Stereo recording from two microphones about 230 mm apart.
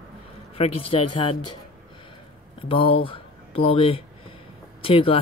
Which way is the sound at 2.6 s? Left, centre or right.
Left.